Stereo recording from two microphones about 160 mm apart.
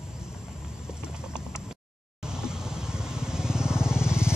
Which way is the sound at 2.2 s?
5° right (ahead or behind).